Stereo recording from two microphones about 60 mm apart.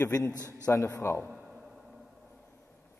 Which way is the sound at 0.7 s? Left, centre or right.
Left.